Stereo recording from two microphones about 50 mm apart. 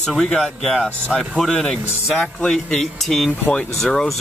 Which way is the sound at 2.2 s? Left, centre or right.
Left.